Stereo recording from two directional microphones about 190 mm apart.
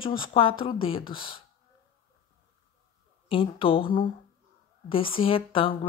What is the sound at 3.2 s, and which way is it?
Speech, 25° left (ahead or behind).